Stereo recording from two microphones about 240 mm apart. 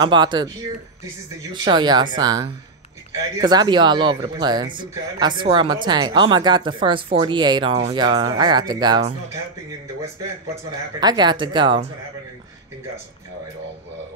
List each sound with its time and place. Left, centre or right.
0.0 s speech: centre
10.5 s speech: centre